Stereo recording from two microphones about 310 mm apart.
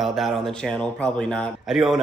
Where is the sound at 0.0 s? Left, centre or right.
Centre.